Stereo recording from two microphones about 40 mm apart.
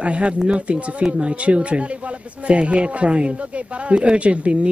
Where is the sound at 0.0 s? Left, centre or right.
Right.